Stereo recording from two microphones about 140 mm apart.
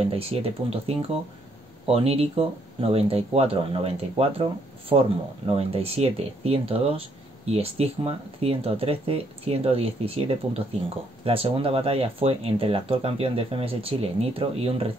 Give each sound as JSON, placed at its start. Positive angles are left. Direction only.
{"t": 0.0, "sound": "speech", "side_deg": -45}